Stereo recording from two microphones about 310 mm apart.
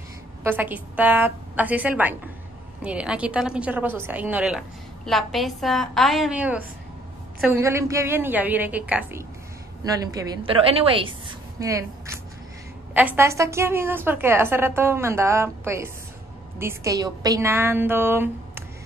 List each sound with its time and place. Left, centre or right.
0.4 s a woman's voice: centre